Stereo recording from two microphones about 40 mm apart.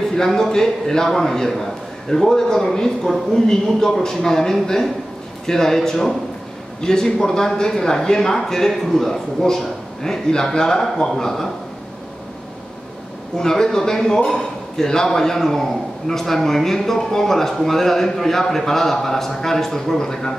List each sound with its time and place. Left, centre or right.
0.1 s a man's voice: centre
13.4 s a man's voice: centre